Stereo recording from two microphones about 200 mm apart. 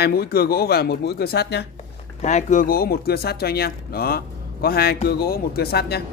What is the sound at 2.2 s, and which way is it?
Speech, 35° left (ahead or behind).